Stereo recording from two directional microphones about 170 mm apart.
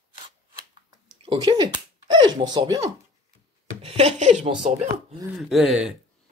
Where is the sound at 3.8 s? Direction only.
35° right (ahead or behind).